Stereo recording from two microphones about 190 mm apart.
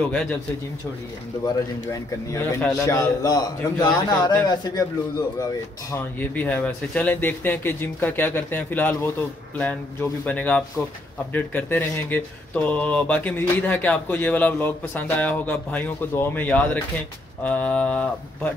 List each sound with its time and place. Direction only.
0.0 s speech: 10° left (ahead or behind)
1.4 s a man's voice: 15° left (ahead or behind)
5.9 s speech: 10° left (ahead or behind)
10.2 s speech: 10° left (ahead or behind)